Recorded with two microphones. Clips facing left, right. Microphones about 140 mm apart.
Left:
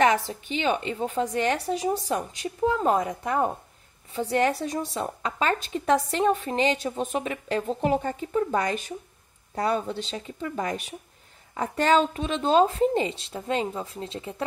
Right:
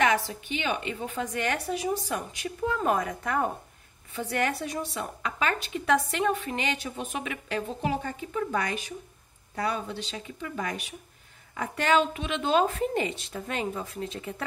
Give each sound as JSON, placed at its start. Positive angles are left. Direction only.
{"t": 0.0, "sound": "a woman's voice", "side_deg": 35}